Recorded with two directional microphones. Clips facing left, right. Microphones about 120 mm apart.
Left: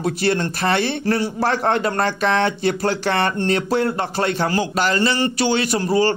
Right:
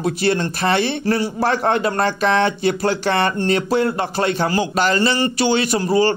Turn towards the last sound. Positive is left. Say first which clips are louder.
# right 1 dB
turn(degrees=-15)  # may be behind; listen again after turning